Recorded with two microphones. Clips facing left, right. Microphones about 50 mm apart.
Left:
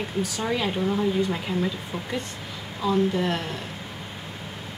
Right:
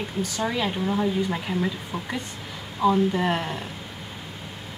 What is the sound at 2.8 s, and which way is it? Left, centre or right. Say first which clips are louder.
Speech: right 2 dB; centre.